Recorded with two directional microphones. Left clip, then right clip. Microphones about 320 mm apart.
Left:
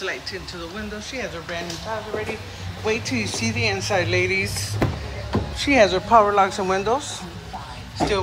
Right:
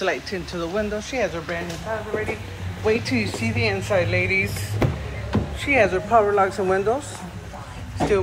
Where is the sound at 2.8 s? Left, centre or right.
Centre.